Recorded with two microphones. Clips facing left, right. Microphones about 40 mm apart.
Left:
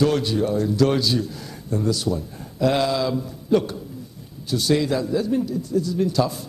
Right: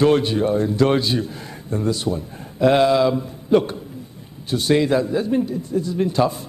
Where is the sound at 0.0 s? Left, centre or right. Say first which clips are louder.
Right 4 dB; right.